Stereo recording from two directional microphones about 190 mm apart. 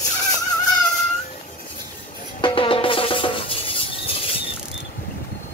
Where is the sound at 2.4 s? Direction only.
25° left (ahead or behind).